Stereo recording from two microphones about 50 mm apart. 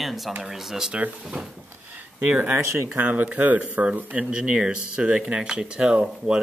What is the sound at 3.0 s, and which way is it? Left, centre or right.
A man's voice, right.